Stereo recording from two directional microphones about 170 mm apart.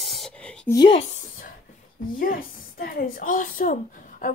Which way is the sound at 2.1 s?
55° left (ahead or behind).